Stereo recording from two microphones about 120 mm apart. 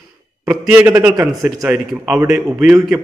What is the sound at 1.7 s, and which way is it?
Speech, 10° right (ahead or behind).